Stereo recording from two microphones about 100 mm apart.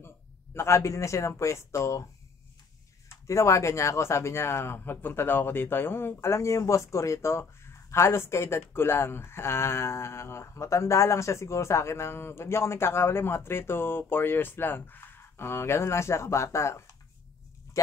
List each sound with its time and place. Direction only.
0.6 s speech: 30° left (ahead or behind)
3.1 s speech: 30° left (ahead or behind)